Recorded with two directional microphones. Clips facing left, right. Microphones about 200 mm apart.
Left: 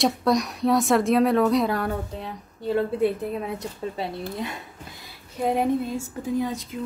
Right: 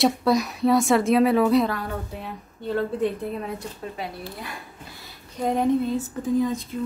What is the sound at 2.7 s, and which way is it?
Speech, 10° left (ahead or behind).